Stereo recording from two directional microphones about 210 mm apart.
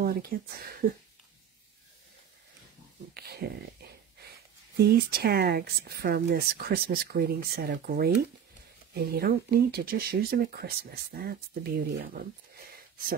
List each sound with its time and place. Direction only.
0.0 s speech: 45° right (ahead or behind)
3.2 s speech: 50° right (ahead or behind)
4.7 s speech: 45° right (ahead or behind)